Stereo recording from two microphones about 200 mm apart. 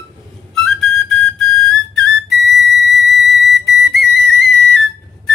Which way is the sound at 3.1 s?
Centre (ahead or behind).